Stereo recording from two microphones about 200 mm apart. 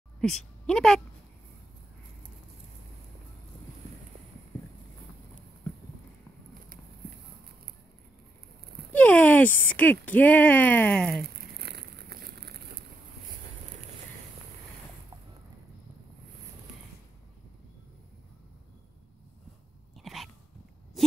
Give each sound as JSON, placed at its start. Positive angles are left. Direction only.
{"t": 0.7, "sound": "speech", "side_deg": 5}
{"t": 8.9, "sound": "speech", "side_deg": 5}
{"t": 11.5, "sound": "a sound", "side_deg": -55}
{"t": 20.0, "sound": "dog", "side_deg": 0}